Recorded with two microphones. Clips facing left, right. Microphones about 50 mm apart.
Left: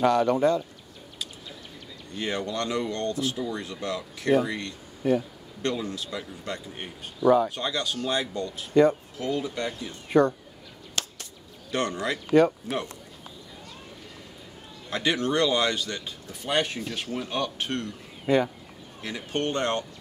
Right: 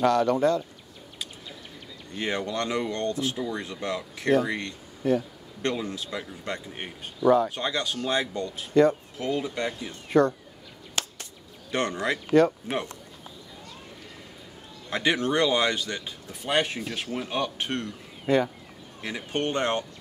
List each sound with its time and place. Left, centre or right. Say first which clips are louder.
0.0 s speech: even; centre
2.1 s speech: right 1 dB; centre
5.0 s speech: even; centre
5.6 s speech: even; right
7.2 s speech: even; centre
7.4 s speech: right 1 dB; right
10.0 s speech: even; centre
11.0 s a sound: right 1 dB; right
11.7 s speech: right 1 dB; right
14.9 s speech: right 1 dB; centre
18.2 s speech: even; centre
18.9 s speech: even; centre